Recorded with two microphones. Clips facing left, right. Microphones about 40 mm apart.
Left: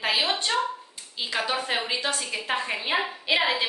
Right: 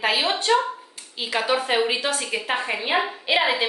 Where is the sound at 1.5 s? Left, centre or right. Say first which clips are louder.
Right 6 dB; right.